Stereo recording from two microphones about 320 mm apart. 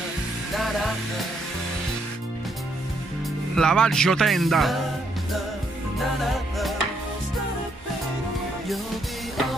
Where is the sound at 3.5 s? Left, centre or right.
Centre.